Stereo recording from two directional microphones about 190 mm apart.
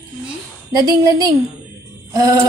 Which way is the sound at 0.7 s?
20° right (ahead or behind).